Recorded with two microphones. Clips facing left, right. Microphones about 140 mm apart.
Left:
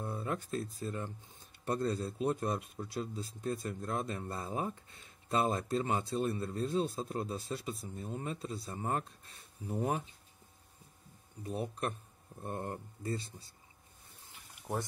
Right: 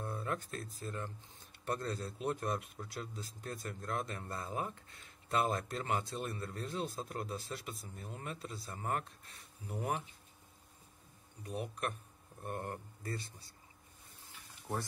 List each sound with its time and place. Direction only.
0.0 s a sound: 20° left (ahead or behind)
0.5 s speech: 25° left (ahead or behind)
11.4 s speech: 30° left (ahead or behind)